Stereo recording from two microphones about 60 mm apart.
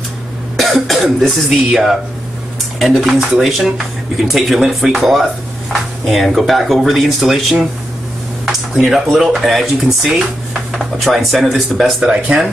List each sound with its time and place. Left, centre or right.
0.8 s speech: centre
11.8 s speech: centre